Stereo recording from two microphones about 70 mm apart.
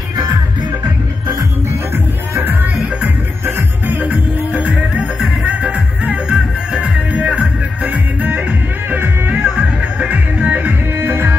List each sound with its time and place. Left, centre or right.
3.4 s music: right